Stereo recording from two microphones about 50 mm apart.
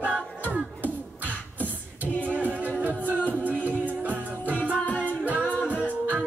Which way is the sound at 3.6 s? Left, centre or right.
Right.